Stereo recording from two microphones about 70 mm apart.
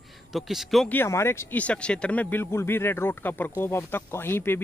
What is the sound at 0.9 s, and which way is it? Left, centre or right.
Speech, left.